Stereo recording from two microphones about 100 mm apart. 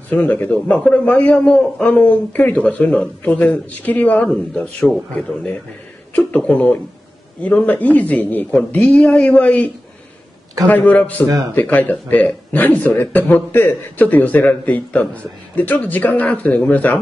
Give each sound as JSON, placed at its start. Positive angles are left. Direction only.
{"t": 0.1, "sound": "a man's voice", "side_deg": 20}
{"t": 10.7, "sound": "a man's voice", "side_deg": 15}